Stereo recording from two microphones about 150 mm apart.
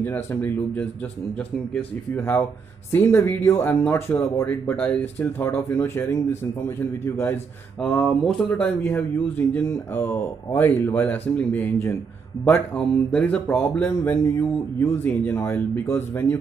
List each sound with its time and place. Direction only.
0.0 s speech: 15° left (ahead or behind)
7.8 s speech: 5° left (ahead or behind)